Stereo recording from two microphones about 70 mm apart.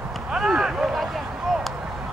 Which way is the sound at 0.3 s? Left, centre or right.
Centre.